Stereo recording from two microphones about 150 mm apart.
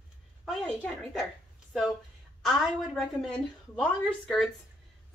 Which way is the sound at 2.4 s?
Centre (ahead or behind).